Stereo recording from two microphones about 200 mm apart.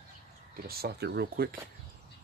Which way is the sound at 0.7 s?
50° right (ahead or behind).